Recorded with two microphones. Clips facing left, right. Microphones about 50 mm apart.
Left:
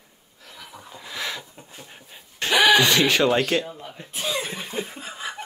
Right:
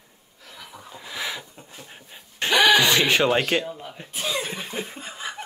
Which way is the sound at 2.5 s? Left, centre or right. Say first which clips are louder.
Even; centre.